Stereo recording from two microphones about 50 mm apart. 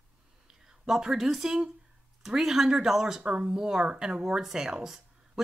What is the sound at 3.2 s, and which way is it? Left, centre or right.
A woman's voice, right.